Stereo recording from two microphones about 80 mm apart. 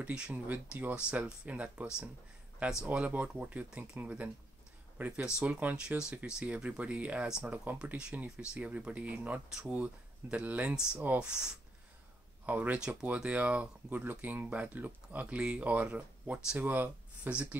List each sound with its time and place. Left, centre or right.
0.0 s speech: centre